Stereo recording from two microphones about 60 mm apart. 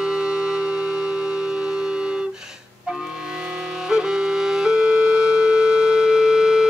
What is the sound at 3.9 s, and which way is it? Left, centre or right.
Music, centre.